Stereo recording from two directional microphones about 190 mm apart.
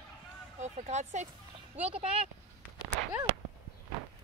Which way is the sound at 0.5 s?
40° right (ahead or behind).